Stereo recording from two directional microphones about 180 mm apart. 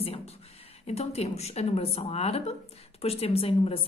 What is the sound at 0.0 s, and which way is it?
A woman's voice, 30° left (ahead or behind).